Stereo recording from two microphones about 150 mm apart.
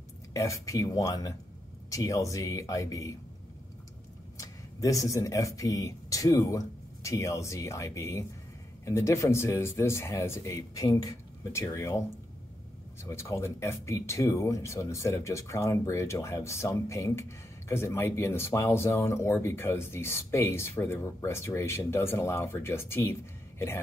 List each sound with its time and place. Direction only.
0.3 s speech: 20° left (ahead or behind)
4.4 s speech: 20° left (ahead or behind)
13.0 s speech: 20° left (ahead or behind)